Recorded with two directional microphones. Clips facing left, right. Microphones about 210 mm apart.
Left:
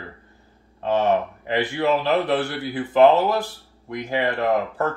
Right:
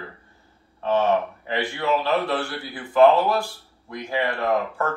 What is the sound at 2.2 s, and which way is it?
Speech, 20° left (ahead or behind).